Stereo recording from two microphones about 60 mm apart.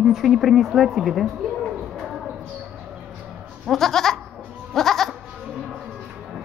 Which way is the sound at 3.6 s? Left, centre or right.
Centre.